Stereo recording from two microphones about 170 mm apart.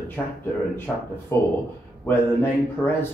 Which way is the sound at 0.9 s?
Centre (ahead or behind).